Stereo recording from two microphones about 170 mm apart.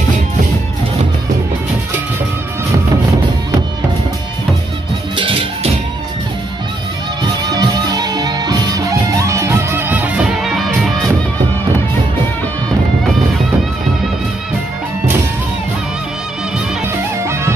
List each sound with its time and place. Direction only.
5.1 s music: 30° right (ahead or behind)
7.5 s music: 25° right (ahead or behind); by 10.7 s centre (ahead or behind)